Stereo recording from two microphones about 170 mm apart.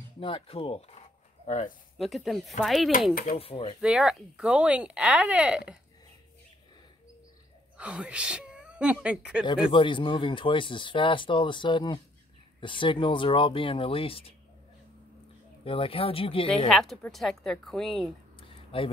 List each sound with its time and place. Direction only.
0.2 s speech: 30° left (ahead or behind)
2.0 s speech: centre (ahead or behind)
3.3 s speech: 35° left (ahead or behind)
3.8 s speech: 5° right (ahead or behind)
7.7 s speech: 5° right (ahead or behind)
9.7 s speech: 30° left (ahead or behind)
15.6 s speech: 30° left (ahead or behind)
16.6 s speech: centre (ahead or behind)
18.7 s speech: 30° left (ahead or behind)